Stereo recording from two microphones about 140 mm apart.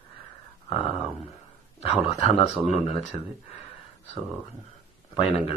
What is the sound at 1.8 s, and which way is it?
A man's voice, 45° left (ahead or behind).